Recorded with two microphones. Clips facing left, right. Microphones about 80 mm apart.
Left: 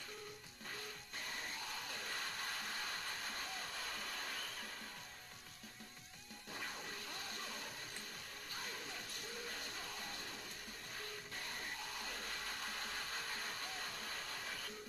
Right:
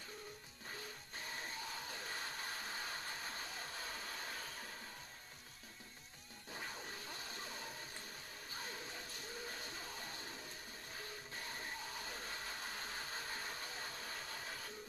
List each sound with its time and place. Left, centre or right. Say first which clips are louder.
1.1 s music: even; right
1.7 s hair dryer: even; right
3.5 s a sound: left 1 dB; right
4.3 s hair dryer: even; right
6.5 s music: even; centre
7.2 s music: left 1 dB; left
8.5 s music: even; right
11.3 s music: right 1 dB; right
12.0 s hair dryer: even; right
13.1 s a sound: even; right
14.4 s printer: left 1 dB; right